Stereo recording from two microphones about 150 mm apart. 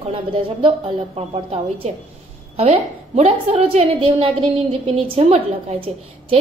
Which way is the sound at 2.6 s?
45° right (ahead or behind).